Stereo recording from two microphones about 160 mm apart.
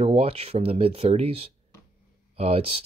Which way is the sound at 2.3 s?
40° right (ahead or behind).